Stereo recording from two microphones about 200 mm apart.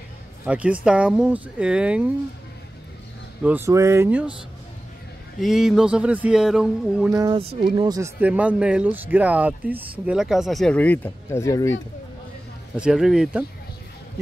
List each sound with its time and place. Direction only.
0.5 s speech: 5° right (ahead or behind)
3.4 s speech: 10° right (ahead or behind)
5.4 s speech: centre (ahead or behind)
7.2 s speech: 25° right (ahead or behind)
8.2 s speech: 5° right (ahead or behind); by 11.7 s 15° left (ahead or behind)
12.7 s speech: 5° right (ahead or behind)